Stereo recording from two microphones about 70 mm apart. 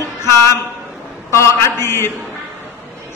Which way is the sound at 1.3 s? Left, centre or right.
Left.